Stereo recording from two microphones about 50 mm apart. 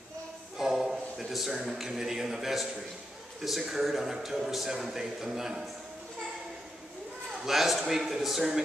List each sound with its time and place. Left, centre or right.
0.6 s a man's voice: centre
7.4 s speech: centre